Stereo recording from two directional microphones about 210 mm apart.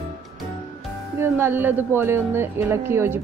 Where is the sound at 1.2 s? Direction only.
10° right (ahead or behind).